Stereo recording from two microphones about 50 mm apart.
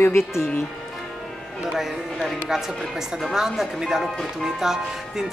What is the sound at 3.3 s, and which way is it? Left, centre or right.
Speech, centre.